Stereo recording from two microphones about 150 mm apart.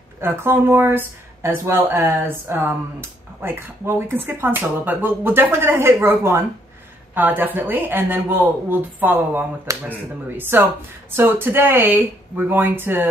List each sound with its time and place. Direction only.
0.2 s speech: 15° right (ahead or behind)